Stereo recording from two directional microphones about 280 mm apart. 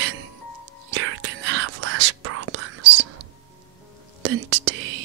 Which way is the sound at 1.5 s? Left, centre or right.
Right.